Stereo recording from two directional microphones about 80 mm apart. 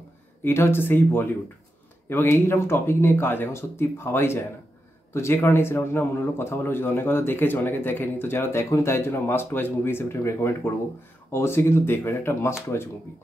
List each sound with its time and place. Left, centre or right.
0.4 s speech: left